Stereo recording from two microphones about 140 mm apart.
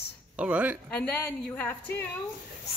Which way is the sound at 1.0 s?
5° left (ahead or behind).